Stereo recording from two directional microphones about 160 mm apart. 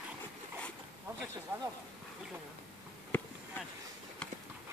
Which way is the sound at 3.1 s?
10° left (ahead or behind).